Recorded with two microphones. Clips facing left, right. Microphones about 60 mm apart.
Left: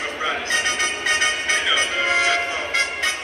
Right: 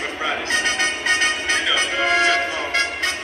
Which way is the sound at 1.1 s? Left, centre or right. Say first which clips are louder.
Right 1 dB; left.